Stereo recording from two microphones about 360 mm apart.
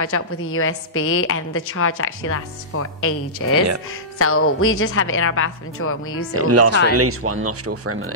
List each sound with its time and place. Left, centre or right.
0.0 s a woman's voice: left
6.3 s speech: right